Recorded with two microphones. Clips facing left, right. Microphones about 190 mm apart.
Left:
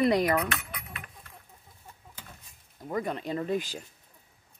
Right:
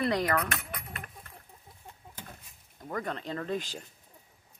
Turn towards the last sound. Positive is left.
turn(degrees=5)  # may be behind; listen again after turning